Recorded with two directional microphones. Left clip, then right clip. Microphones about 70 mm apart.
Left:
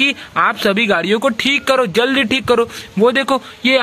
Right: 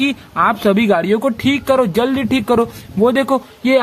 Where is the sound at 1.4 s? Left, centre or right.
Right.